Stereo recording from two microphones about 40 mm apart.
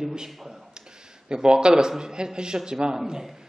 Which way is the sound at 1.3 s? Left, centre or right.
Right.